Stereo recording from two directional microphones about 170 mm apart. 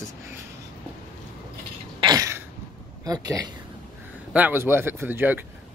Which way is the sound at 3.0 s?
20° right (ahead or behind).